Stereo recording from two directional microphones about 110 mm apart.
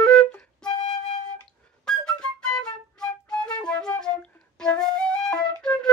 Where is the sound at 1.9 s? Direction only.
5° left (ahead or behind).